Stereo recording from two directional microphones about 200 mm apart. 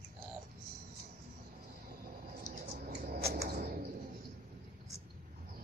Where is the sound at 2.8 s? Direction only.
50° right (ahead or behind).